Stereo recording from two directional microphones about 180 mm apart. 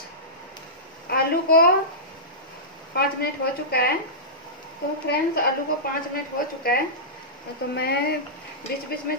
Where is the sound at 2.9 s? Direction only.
60° left (ahead or behind).